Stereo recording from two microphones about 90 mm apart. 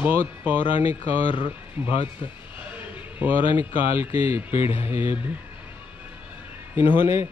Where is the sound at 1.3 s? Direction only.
65° left (ahead or behind).